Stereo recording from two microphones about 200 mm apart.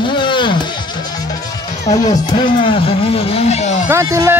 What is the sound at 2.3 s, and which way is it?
Speech, 25° left (ahead or behind).